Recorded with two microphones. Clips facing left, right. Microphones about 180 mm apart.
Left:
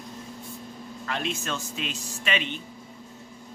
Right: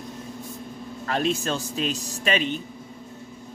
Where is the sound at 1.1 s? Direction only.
40° right (ahead or behind).